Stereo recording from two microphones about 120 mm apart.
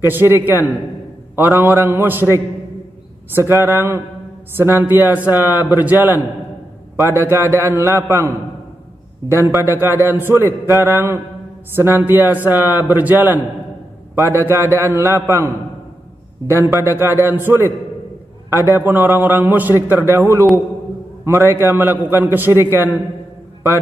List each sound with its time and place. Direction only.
0.0 s a man's voice: 20° right (ahead or behind)
9.3 s a man's voice: 20° right (ahead or behind)
18.5 s a man's voice: 30° left (ahead or behind)
18.8 s a man's voice: 15° right (ahead or behind)